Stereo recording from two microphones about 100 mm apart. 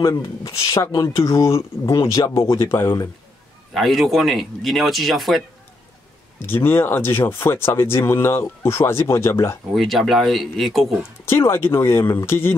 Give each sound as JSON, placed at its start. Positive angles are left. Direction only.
{"t": 0.0, "sound": "speech", "side_deg": 35}
{"t": 3.7, "sound": "speech", "side_deg": 0}
{"t": 6.4, "sound": "speech", "side_deg": 25}
{"t": 9.7, "sound": "speech", "side_deg": 0}
{"t": 11.2, "sound": "speech", "side_deg": 25}